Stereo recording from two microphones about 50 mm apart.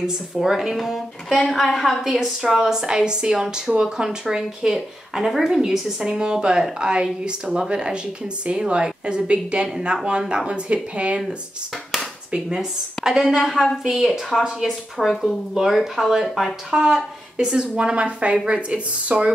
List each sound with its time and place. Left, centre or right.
0.0 s a woman's voice: centre
13.4 s a woman's voice: centre
15.5 s speech: centre; by 19.3 s right